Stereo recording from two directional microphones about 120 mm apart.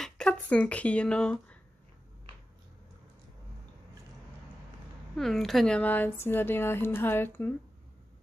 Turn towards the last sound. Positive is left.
turn(degrees=15)  # may be behind; listen again after turning